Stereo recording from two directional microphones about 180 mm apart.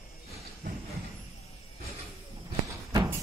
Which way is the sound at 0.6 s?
60° right (ahead or behind).